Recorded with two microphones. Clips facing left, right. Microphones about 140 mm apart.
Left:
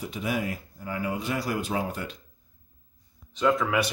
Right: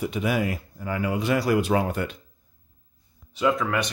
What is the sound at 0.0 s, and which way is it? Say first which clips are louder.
Speech: right 5 dB; 70° right (ahead or behind).